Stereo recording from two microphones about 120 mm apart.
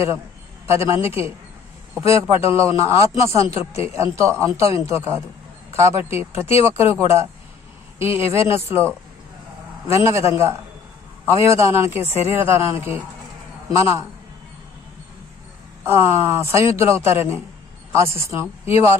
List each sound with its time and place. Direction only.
0.7 s a man's voice: 20° right (ahead or behind)
10.0 s a man's voice: 25° right (ahead or behind)
16.4 s a man's voice: 25° right (ahead or behind)